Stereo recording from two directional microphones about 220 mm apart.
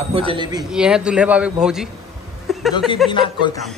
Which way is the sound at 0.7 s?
5° right (ahead or behind).